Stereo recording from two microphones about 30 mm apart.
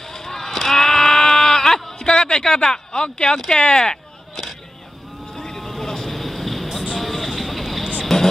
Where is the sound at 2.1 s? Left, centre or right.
Left.